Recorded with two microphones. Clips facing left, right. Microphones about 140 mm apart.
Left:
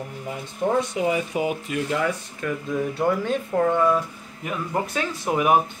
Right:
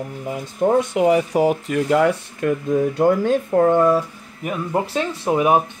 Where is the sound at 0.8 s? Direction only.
60° right (ahead or behind).